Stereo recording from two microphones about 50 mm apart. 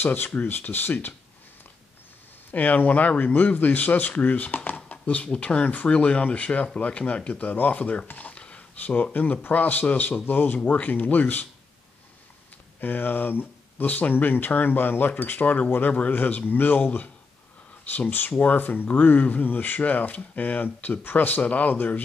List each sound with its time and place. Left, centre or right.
0.0 s speech: left
2.5 s speech: left
8.1 s a sound: left
8.9 s speech: left
12.8 s speech: left